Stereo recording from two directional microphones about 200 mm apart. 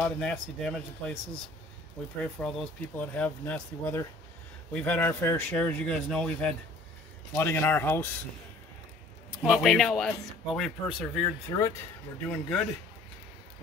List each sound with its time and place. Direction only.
0.0 s speech: 5° left (ahead or behind)
2.3 s a man's voice: 5° left (ahead or behind)
9.4 s speech: centre (ahead or behind)
11.2 s a man's voice: 15° left (ahead or behind)
12.3 s speech: 5° left (ahead or behind)